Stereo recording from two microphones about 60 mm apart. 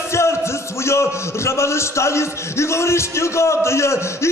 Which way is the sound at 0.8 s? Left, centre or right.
Left.